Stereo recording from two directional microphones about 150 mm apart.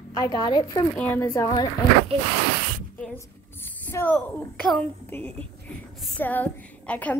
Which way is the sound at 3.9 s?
15° left (ahead or behind).